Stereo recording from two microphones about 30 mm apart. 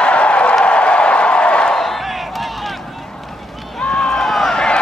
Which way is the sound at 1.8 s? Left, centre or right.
Centre.